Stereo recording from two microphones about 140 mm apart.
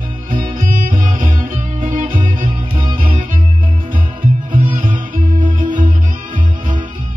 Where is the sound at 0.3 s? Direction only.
75° right (ahead or behind).